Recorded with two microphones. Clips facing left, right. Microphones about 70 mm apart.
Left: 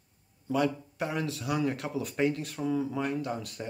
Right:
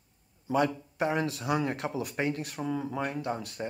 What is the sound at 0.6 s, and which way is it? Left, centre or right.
Speech, right.